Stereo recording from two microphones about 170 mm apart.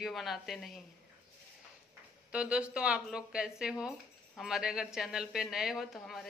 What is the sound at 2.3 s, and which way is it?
Speech, 5° right (ahead or behind).